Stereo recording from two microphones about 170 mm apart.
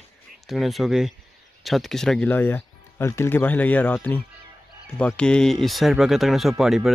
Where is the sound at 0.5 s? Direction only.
Centre (ahead or behind).